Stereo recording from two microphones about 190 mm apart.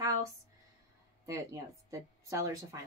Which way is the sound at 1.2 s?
15° right (ahead or behind).